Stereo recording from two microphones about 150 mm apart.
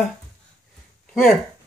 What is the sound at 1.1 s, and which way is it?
Speech, centre (ahead or behind).